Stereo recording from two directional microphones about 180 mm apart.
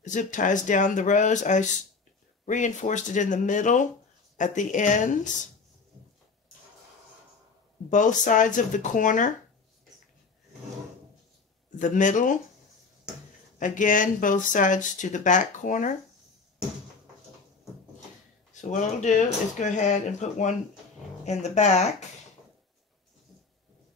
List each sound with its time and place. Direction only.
0.0 s speech: 45° left (ahead or behind)
7.9 s speech: 45° left (ahead or behind)
11.8 s speech: 45° left (ahead or behind)
13.6 s speech: 45° left (ahead or behind)
18.5 s speech: 40° left (ahead or behind)